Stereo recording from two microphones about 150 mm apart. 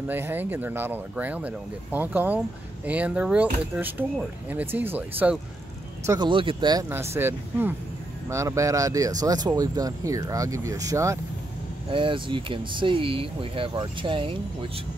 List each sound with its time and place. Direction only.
0.1 s speech: 15° right (ahead or behind)
6.0 s speech: 30° right (ahead or behind)
6.9 s speech: 15° right (ahead or behind)
11.9 s speech: 35° right (ahead or behind)